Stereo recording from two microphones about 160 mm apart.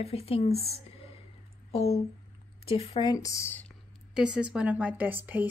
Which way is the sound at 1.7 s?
40° left (ahead or behind).